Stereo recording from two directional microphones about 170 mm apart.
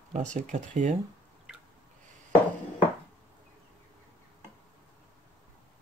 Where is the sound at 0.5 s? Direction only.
45° right (ahead or behind).